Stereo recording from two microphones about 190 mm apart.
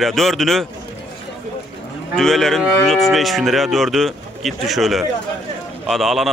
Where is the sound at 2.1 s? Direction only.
Centre (ahead or behind).